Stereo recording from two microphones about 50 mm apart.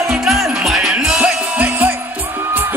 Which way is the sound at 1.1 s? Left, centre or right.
Right.